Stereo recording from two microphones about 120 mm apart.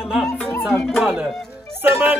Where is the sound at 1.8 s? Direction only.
15° right (ahead or behind).